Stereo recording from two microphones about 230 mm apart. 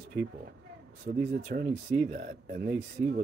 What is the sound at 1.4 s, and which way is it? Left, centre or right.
Speech, right.